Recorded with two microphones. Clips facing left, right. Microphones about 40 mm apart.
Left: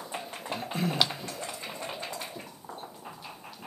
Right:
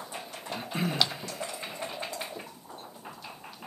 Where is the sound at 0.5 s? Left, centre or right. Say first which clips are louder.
Left 2 dB; centre.